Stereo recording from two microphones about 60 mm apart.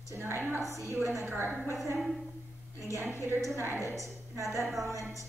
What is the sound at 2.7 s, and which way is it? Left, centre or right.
A woman's voice, right.